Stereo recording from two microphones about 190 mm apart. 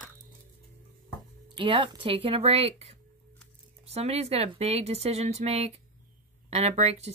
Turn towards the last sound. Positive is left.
turn(degrees=-35)  # may be behind; listen again after turning